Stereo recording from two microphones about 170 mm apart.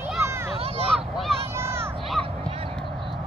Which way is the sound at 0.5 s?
35° right (ahead or behind).